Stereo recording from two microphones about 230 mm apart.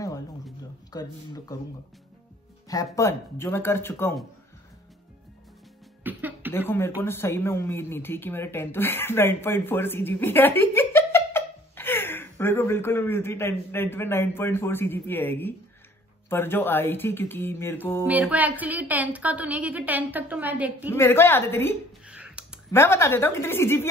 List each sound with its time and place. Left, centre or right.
0.9 s speech: centre
2.7 s speech: centre
6.0 s cough: centre
7.0 s speech: centre
18.0 s a woman's voice: centre
20.9 s speech: centre
22.0 s clicking: centre
22.7 s speech: centre